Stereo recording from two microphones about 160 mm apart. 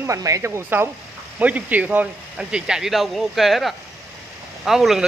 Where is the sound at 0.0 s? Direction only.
20° right (ahead or behind).